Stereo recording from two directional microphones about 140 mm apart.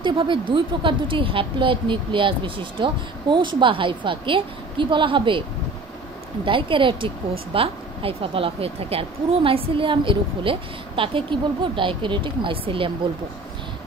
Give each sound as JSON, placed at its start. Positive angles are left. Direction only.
{"t": 0.0, "sound": "a woman's voice", "side_deg": -35}
{"t": 6.4, "sound": "a woman's voice", "side_deg": -35}